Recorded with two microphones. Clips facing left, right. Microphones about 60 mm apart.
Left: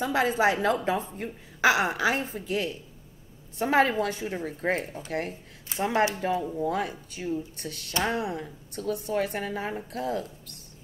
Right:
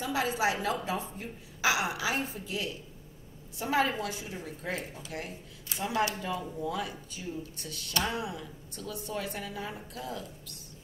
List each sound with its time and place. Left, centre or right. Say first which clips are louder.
0.0 s a woman's voice: left 6 dB; left